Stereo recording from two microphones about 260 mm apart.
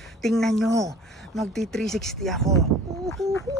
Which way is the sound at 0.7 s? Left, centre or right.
Centre.